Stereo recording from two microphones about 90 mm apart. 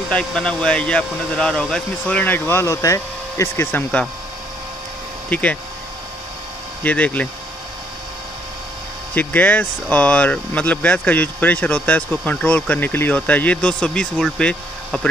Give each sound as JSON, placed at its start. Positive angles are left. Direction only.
{"t": 0.1, "sound": "speech", "side_deg": 10}
{"t": 5.3, "sound": "speech", "side_deg": 15}
{"t": 6.8, "sound": "speech", "side_deg": 15}
{"t": 9.1, "sound": "speech", "side_deg": 20}